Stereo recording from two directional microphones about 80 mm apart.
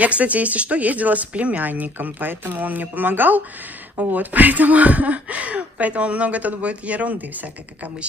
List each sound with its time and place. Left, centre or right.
0.0 s speech: centre